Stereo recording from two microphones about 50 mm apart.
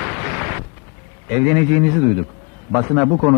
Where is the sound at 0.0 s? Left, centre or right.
Centre.